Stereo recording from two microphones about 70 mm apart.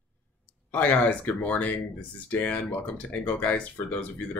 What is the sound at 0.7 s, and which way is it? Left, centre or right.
Speech, left.